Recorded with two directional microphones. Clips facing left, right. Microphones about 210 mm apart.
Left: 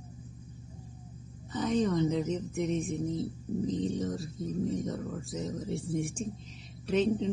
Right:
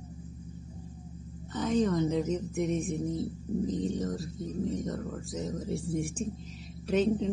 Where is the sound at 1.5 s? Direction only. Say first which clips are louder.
Right 1 dB; centre (ahead or behind).